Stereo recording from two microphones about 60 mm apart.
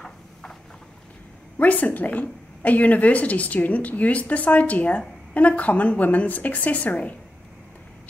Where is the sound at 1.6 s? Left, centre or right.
Left.